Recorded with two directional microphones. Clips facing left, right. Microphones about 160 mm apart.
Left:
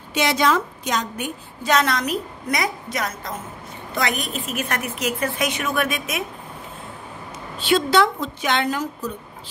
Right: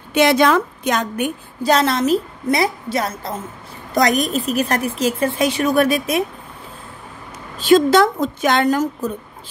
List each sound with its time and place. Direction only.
0.1 s a woman's voice: 55° right (ahead or behind)
1.6 s a woman's voice: 30° right (ahead or behind)
3.9 s a woman's voice: 40° right (ahead or behind)
7.5 s a woman's voice: 45° right (ahead or behind)